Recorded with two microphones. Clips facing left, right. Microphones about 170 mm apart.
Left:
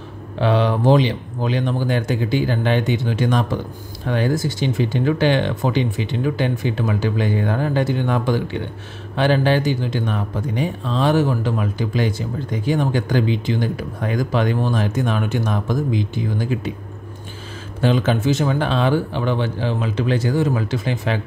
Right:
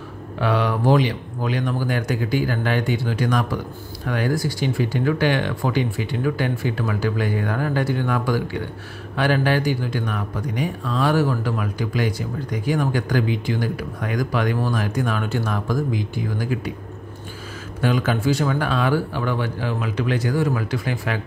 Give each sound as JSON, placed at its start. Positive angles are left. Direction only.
{"t": 0.4, "sound": "speech", "side_deg": 25}
{"t": 17.8, "sound": "speech", "side_deg": 25}